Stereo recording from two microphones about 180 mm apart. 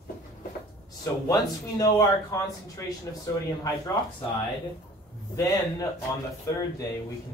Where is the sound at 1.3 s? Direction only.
20° left (ahead or behind).